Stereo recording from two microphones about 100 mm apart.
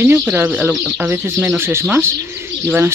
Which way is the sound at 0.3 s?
20° right (ahead or behind).